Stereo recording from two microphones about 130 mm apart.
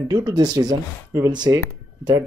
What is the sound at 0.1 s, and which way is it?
Speech, 30° right (ahead or behind).